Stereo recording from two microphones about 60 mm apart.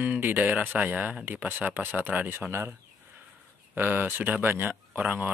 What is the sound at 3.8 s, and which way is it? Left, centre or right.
Speech, right.